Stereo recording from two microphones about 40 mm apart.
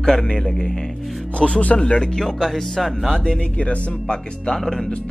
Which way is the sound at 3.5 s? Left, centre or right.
Left.